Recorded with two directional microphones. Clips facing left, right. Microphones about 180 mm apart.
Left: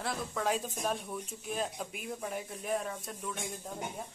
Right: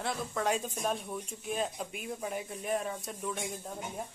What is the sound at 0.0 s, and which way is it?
Speech, centre (ahead or behind).